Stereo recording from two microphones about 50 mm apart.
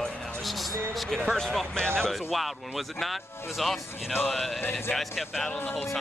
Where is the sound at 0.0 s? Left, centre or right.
Centre.